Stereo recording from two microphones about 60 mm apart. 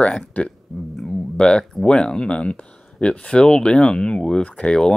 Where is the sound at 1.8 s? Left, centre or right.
Centre.